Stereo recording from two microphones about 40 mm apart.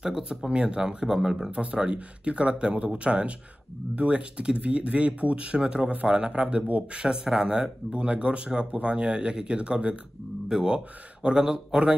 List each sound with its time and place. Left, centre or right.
0.0 s speech: centre
1.5 s speech: right